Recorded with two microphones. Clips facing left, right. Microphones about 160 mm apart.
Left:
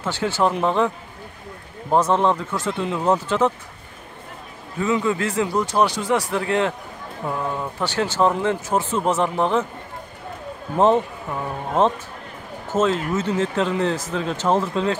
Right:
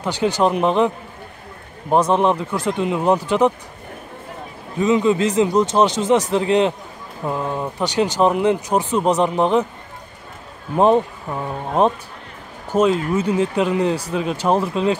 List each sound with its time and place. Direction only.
0.0 s speech: 15° right (ahead or behind)
4.7 s speech: 20° right (ahead or behind)
11.8 s speech: 15° right (ahead or behind)